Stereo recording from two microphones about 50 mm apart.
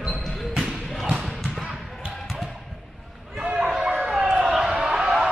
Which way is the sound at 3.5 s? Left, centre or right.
Centre.